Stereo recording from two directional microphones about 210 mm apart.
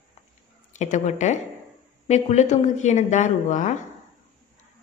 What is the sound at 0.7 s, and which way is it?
A woman's voice, 35° left (ahead or behind).